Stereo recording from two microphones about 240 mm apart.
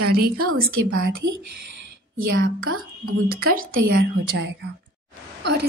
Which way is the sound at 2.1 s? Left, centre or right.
Right.